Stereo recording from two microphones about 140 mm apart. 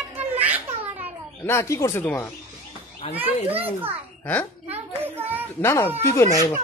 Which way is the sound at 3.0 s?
45° left (ahead or behind).